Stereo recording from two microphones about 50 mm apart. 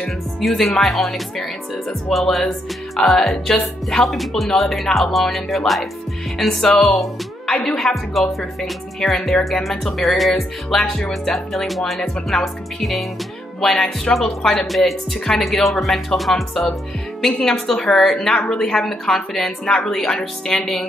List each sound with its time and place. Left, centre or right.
0.4 s speech: centre
7.5 s speech: left
7.8 s speech: centre
17.4 s speech: centre